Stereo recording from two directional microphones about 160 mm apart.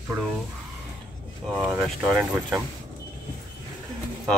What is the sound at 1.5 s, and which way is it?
Speech, 15° right (ahead or behind).